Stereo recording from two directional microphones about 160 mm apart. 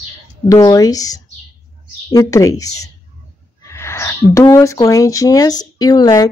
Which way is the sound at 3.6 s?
15° left (ahead or behind).